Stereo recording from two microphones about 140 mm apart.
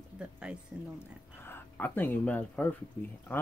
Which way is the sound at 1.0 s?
15° left (ahead or behind).